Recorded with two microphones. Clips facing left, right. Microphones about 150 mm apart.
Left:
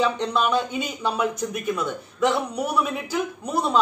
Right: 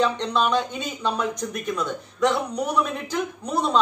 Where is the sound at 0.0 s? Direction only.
5° left (ahead or behind).